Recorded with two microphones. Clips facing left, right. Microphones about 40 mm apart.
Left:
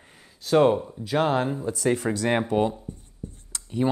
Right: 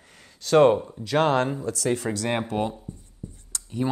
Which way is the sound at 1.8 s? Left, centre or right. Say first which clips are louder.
Left 3 dB; left.